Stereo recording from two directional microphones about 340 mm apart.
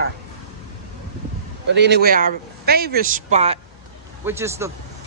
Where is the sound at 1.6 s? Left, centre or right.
Right.